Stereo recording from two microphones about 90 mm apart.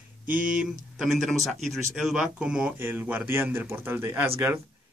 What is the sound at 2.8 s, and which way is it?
Speech, 25° right (ahead or behind).